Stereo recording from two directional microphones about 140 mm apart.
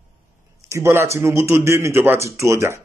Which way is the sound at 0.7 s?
20° right (ahead or behind).